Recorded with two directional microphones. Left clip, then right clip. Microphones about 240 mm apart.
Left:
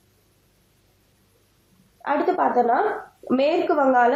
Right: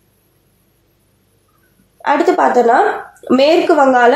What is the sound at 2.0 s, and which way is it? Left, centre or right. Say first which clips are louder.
A woman's voice: right 9 dB; right.